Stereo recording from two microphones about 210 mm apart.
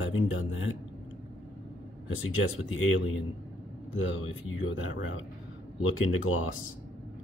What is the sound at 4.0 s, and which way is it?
Speech, 70° left (ahead or behind).